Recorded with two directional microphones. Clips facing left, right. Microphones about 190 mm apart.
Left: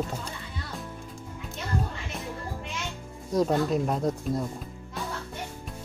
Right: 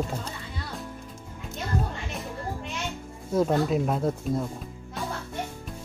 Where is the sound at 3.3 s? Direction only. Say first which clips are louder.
Right 1 dB; 5° right (ahead or behind).